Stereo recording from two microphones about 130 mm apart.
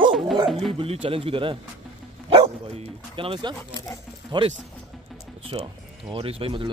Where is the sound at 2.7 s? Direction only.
40° right (ahead or behind).